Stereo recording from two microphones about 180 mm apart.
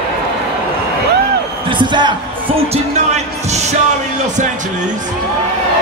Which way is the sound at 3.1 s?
40° right (ahead or behind).